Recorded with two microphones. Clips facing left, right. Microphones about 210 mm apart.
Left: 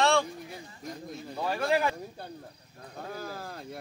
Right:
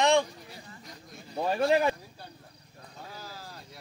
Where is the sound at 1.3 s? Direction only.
25° right (ahead or behind).